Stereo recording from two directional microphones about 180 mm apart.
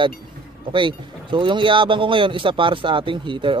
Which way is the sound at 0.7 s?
25° right (ahead or behind).